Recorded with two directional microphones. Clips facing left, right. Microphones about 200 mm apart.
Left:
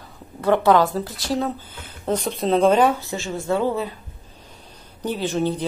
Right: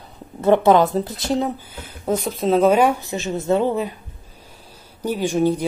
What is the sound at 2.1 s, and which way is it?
Speech, 5° right (ahead or behind).